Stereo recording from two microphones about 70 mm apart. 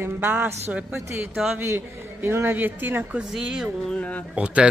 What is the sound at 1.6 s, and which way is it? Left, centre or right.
A woman's voice, right.